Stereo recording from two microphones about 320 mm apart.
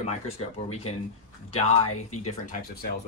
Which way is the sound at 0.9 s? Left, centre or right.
Centre.